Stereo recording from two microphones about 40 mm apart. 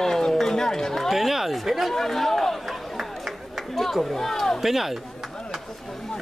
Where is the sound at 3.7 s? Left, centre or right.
Centre.